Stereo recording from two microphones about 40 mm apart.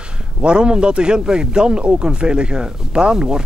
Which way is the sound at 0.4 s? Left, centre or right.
Right.